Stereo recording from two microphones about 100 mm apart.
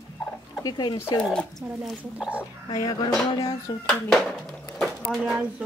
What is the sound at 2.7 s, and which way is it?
Speech, 40° left (ahead or behind).